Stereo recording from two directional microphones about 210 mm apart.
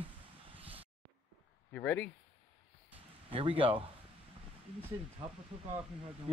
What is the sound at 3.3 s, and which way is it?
Speech, 25° right (ahead or behind).